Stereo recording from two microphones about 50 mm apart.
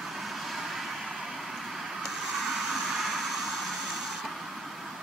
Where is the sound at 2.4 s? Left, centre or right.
Centre.